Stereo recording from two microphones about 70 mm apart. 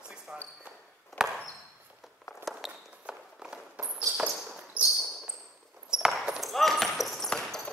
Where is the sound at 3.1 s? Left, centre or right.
Centre.